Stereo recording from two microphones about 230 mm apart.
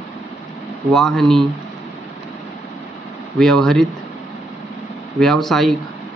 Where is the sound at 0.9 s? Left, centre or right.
Centre.